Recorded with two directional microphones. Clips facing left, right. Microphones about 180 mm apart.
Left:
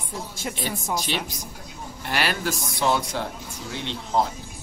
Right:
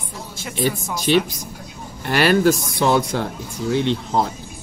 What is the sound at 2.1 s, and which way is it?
Speech, 55° right (ahead or behind).